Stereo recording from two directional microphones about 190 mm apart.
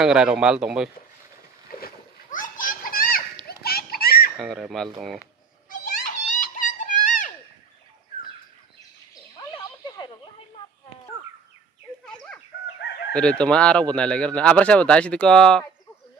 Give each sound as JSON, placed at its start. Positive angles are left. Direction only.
{"t": 0.0, "sound": "speech", "side_deg": -5}
{"t": 1.7, "sound": "splash", "side_deg": 50}
{"t": 3.4, "sound": "a sound", "side_deg": 55}
{"t": 4.4, "sound": "speech", "side_deg": 0}
{"t": 5.7, "sound": "a sound", "side_deg": 45}
{"t": 9.6, "sound": "snake", "side_deg": 20}
{"t": 13.1, "sound": "speech", "side_deg": 5}